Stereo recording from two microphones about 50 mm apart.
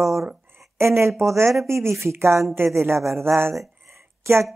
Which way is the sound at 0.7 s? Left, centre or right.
Right.